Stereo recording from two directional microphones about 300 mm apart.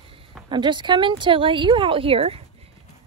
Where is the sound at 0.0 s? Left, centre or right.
Centre.